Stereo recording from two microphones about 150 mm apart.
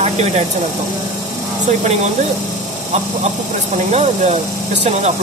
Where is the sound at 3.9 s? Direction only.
45° right (ahead or behind).